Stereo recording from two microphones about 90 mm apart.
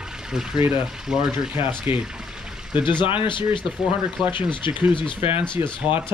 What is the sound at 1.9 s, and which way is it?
Pour, 5° right (ahead or behind).